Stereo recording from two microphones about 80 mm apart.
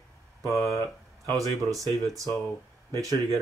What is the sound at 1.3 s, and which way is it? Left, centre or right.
Speech, right.